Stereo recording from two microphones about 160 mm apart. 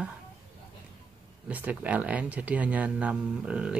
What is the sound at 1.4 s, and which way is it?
Speech, 10° right (ahead or behind).